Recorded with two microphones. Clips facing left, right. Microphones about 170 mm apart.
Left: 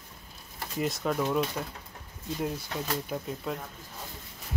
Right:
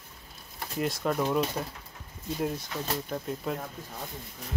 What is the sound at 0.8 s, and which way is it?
Speech, centre (ahead or behind).